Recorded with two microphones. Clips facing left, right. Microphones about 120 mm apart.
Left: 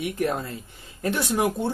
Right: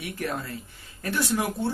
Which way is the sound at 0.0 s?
20° left (ahead or behind).